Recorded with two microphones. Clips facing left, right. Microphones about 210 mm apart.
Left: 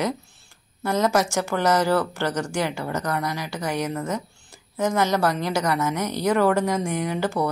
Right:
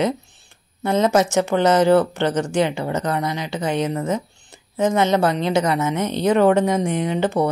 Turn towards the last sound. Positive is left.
turn(degrees=-20)  # may be behind; listen again after turning